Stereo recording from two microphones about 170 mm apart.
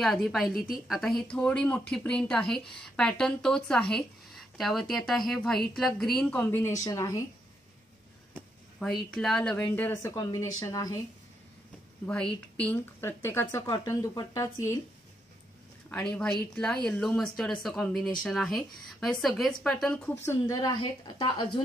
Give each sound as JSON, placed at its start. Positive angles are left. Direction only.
{"t": 0.0, "sound": "a woman's voice", "side_deg": 0}
{"t": 9.1, "sound": "a woman's voice", "side_deg": 5}
{"t": 12.1, "sound": "a woman's voice", "side_deg": 5}
{"t": 15.9, "sound": "speech", "side_deg": 5}
{"t": 20.2, "sound": "a woman's voice", "side_deg": 20}